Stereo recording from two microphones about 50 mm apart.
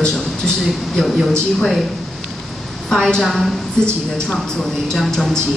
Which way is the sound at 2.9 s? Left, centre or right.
Centre.